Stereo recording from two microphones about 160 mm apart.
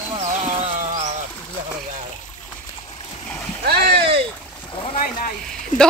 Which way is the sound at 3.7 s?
85° right.